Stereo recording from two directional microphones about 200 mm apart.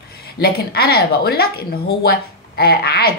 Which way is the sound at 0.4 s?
50° left (ahead or behind).